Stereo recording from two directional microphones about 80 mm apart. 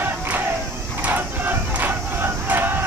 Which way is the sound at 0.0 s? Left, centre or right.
Right.